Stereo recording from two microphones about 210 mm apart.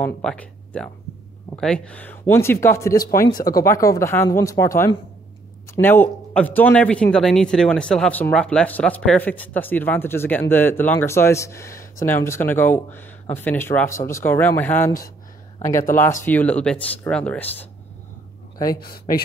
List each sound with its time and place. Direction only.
0.0 s a man's voice: 5° left (ahead or behind)
18.8 s a man's voice: 45° left (ahead or behind)